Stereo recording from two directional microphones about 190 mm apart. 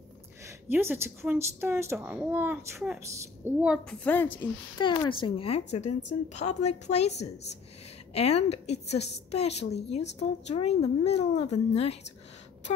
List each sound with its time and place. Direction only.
0.5 s speech: 10° right (ahead or behind)
4.0 s a woman's voice: 10° left (ahead or behind)
4.7 s speech: 25° left (ahead or behind)